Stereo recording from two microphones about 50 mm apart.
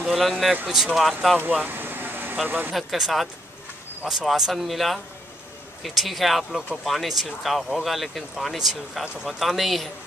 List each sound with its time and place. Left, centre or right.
0.0 s speech: centre
1.5 s vehicle: right
2.4 s speech: right
2.7 s speech: centre